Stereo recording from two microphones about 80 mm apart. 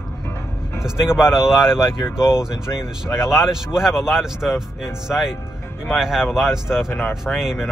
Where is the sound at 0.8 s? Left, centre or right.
Centre.